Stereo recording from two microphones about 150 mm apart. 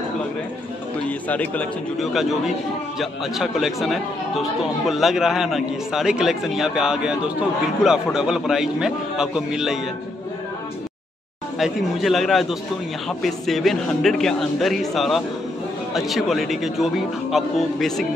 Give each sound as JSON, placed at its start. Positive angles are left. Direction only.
{"t": 1.0, "sound": "a man's voice", "side_deg": 10}
{"t": 3.0, "sound": "speech", "side_deg": 0}
{"t": 11.5, "sound": "speech", "side_deg": 0}